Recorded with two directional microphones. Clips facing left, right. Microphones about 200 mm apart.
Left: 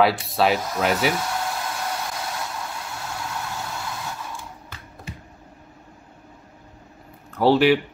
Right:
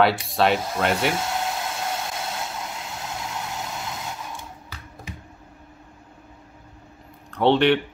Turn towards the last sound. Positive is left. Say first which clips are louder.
# left 1 dB
turn(degrees=5)  # may be behind; listen again after turning